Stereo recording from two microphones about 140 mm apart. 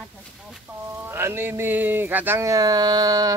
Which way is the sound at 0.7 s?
15° right (ahead or behind).